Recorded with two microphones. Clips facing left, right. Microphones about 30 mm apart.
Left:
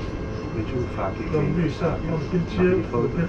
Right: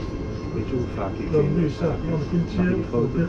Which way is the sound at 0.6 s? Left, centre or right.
Centre.